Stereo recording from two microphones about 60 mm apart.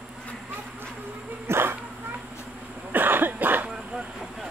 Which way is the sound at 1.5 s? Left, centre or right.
Right.